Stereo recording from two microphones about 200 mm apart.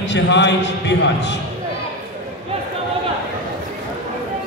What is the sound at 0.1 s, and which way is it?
Speech, 60° left (ahead or behind).